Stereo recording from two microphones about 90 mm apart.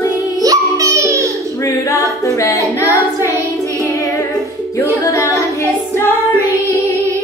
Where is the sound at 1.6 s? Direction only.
35° left (ahead or behind).